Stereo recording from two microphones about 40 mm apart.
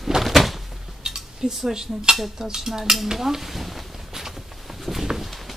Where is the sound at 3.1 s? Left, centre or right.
Centre.